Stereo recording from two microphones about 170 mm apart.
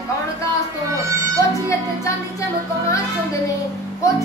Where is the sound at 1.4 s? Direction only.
20° left (ahead or behind).